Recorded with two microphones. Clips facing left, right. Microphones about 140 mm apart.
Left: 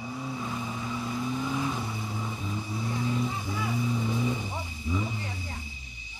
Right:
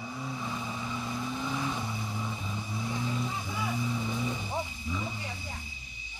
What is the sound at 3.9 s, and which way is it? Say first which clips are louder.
Vehicle: left 4 dB; 5° left (ahead or behind).